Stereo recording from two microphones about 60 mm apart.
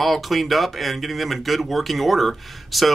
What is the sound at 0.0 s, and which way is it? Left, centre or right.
Speech, centre.